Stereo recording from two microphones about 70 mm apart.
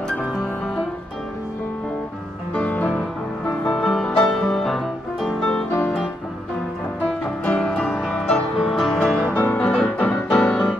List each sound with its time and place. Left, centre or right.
2.5 s music: left
3.6 s music: centre
7.4 s music: centre
7.9 s music: centre
9.3 s music: left